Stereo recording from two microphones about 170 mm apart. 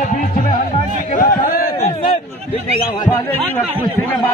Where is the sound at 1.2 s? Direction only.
55° left (ahead or behind).